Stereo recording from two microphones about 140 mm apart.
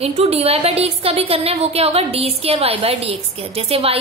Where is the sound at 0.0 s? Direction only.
45° right (ahead or behind).